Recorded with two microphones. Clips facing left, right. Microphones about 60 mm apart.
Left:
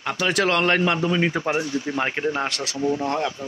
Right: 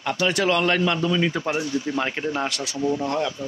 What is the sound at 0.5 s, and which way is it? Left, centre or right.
A man's voice, left.